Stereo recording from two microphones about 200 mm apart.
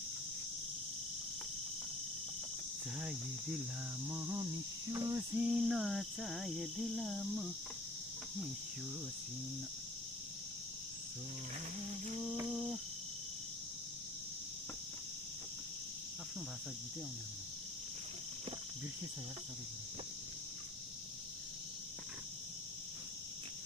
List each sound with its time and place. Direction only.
3.0 s cricket: 5° right (ahead or behind)
5.5 s cricket: centre (ahead or behind)
12.4 s cricket: centre (ahead or behind)